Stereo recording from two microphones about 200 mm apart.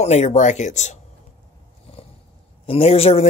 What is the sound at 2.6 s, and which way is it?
Speech, 30° left (ahead or behind).